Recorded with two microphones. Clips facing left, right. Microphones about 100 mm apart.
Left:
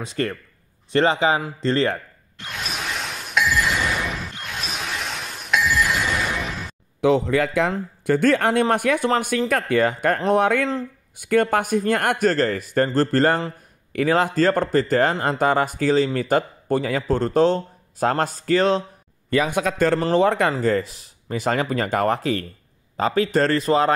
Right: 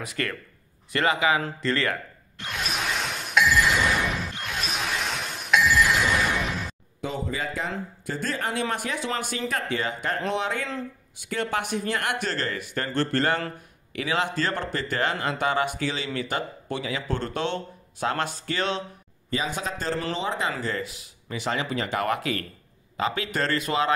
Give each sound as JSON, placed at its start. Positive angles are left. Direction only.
{"t": 0.0, "sound": "speech", "side_deg": 25}
{"t": 2.3, "sound": "a sound", "side_deg": 0}
{"t": 7.0, "sound": "speech", "side_deg": 70}
{"t": 19.3, "sound": "speech", "side_deg": 55}
{"t": 20.6, "sound": "speech", "side_deg": 40}